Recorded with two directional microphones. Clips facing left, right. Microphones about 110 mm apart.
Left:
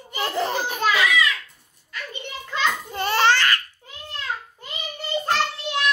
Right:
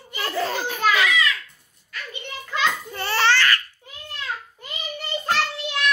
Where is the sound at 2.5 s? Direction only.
20° left (ahead or behind).